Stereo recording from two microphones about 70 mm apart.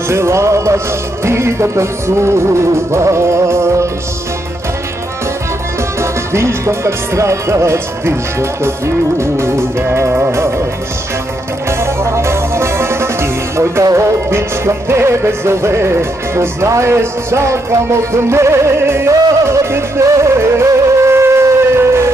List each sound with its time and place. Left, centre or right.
0.1 s music: right
5.9 s music: right
11.8 s music: right